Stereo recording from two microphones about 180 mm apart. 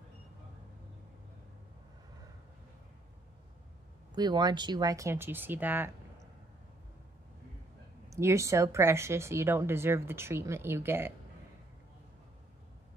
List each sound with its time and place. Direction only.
4.1 s speech: 25° right (ahead or behind)
8.1 s speech: 15° right (ahead or behind)